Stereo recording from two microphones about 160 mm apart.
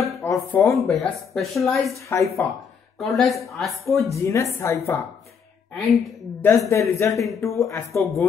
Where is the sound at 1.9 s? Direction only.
20° left (ahead or behind).